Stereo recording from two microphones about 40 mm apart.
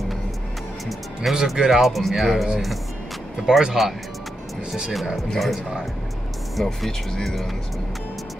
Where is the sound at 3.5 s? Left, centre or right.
Right.